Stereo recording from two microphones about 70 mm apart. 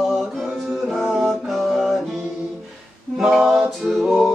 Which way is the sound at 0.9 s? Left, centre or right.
Centre.